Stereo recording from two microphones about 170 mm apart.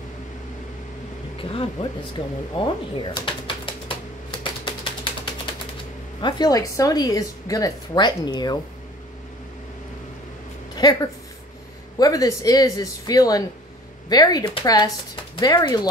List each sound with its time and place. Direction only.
1.4 s a woman's voice: 30° left (ahead or behind)
4.3 s typing: 30° left (ahead or behind)
6.2 s a woman's voice: 25° left (ahead or behind)
10.8 s a woman's voice: 25° left (ahead or behind)